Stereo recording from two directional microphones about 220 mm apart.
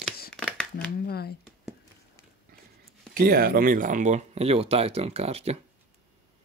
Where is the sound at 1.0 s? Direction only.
45° left (ahead or behind).